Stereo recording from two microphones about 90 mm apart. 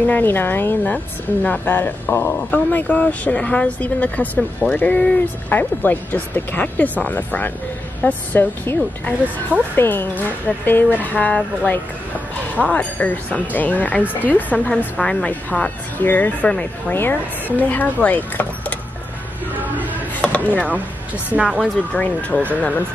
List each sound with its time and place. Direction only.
0.0 s speech: 20° left (ahead or behind)
19.6 s a sound: 20° right (ahead or behind)
20.2 s chopping: 15° left (ahead or behind)
21.4 s speech: 10° right (ahead or behind)
21.9 s speech: 15° left (ahead or behind)